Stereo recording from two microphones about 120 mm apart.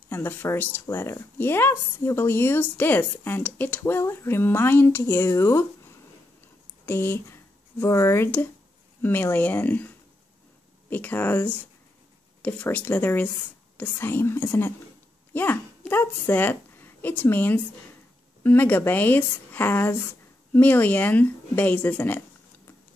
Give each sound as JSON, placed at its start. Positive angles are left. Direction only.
{"t": 0.1, "sound": "speech", "side_deg": 15}
{"t": 6.9, "sound": "a woman's voice", "side_deg": 20}